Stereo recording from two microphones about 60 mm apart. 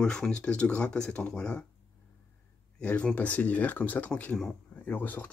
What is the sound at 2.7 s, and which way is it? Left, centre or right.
Speech, centre.